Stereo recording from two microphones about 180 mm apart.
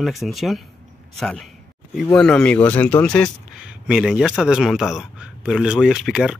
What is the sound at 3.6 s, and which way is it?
Speech, 5° right (ahead or behind).